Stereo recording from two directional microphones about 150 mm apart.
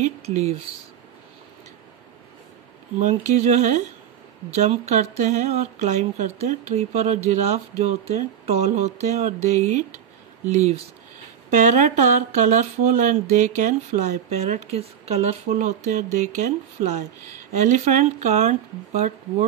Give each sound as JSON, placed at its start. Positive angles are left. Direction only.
{"t": 0.0, "sound": "speech", "side_deg": -50}
{"t": 3.0, "sound": "speech", "side_deg": -50}
{"t": 11.5, "sound": "speech", "side_deg": -60}